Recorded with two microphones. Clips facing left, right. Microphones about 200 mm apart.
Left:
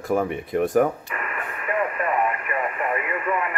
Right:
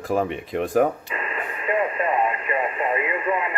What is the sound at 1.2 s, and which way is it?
Radio, 20° right (ahead or behind).